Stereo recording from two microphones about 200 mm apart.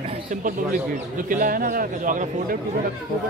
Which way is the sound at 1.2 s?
45° right (ahead or behind).